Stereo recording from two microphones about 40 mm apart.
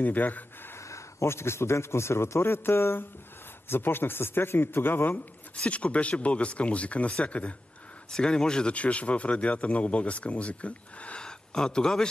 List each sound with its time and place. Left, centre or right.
0.0 s speech: left
1.2 s a man's voice: left
5.6 s speech: left
8.1 s speech: centre
8.7 s speech: left
11.1 s speech: centre